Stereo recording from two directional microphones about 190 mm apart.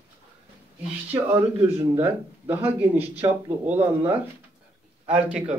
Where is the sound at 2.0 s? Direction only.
10° right (ahead or behind).